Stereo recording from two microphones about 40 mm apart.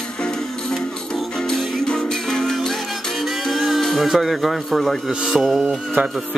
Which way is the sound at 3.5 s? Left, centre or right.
Centre.